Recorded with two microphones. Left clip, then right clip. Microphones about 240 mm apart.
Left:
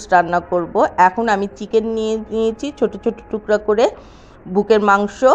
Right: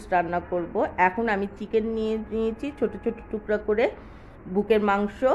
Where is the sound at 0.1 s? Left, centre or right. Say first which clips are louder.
Left 10 dB; centre.